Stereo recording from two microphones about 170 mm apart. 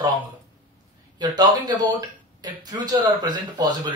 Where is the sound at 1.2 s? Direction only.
25° right (ahead or behind).